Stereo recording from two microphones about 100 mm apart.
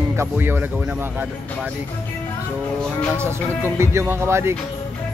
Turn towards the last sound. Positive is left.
turn(degrees=-25)  # may be behind; listen again after turning